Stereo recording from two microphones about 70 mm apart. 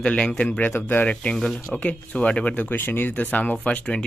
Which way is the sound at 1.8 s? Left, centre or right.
Centre.